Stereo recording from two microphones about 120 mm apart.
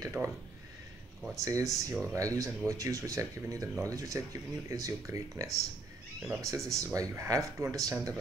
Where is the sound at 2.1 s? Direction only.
25° right (ahead or behind).